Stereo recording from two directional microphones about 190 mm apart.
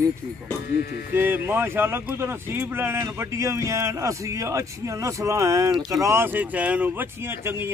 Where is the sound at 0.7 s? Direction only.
55° left (ahead or behind).